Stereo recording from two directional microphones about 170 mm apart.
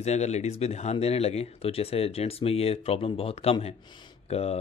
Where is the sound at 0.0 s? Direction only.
40° left (ahead or behind).